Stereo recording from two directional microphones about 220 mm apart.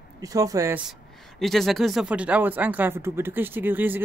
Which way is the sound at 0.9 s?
Centre (ahead or behind).